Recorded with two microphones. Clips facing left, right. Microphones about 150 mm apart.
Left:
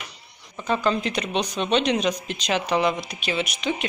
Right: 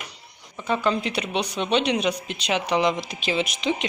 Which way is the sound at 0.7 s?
10° right (ahead or behind).